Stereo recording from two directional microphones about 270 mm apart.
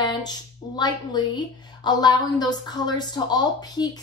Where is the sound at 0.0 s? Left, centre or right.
Centre.